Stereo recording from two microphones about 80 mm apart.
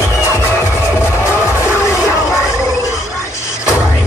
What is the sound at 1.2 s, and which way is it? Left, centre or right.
Music, left.